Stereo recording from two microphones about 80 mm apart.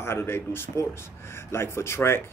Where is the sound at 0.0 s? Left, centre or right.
Left.